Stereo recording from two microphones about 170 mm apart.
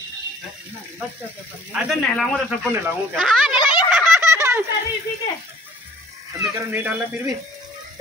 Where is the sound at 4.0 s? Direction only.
15° right (ahead or behind).